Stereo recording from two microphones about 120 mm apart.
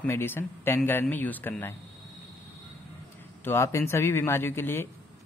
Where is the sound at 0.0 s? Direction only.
20° left (ahead or behind).